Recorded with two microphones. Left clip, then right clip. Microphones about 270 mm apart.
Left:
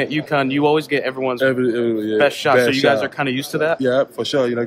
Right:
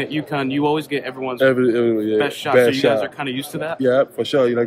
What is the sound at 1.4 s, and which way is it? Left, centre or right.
Speech, centre.